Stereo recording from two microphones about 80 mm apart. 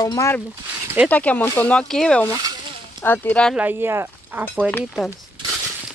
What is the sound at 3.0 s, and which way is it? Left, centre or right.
Speech, left.